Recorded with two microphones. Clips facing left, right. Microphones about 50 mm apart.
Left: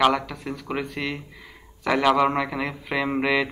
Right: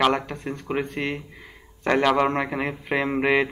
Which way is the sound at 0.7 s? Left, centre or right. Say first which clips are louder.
Right 2 dB; centre.